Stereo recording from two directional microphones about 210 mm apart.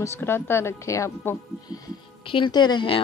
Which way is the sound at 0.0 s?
10° left (ahead or behind).